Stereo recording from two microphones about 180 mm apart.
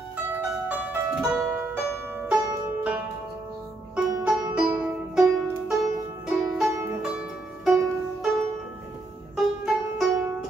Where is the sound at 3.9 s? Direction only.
5° right (ahead or behind).